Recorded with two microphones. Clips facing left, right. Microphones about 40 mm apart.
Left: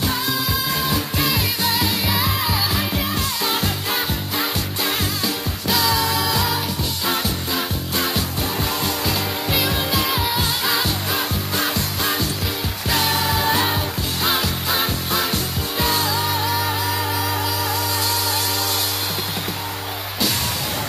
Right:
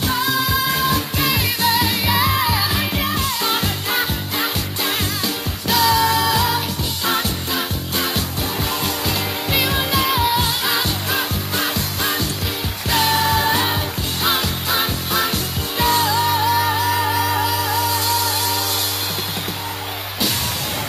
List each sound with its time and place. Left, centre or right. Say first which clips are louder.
0.3 s music: right 4 dB; centre
0.7 s music: right 2 dB; centre
9.6 s music: right 3 dB; centre